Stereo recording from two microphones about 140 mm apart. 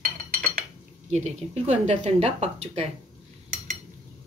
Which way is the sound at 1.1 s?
55° right (ahead or behind).